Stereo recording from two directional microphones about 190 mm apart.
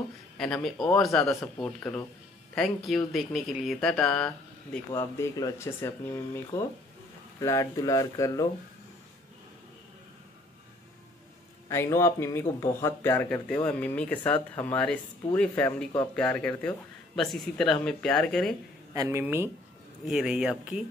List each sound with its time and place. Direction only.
0.4 s speech: 5° left (ahead or behind)
4.9 s speech: 15° left (ahead or behind)
11.7 s speech: 15° left (ahead or behind)
18.9 s speech: 15° right (ahead or behind)
20.1 s speech: 5° right (ahead or behind)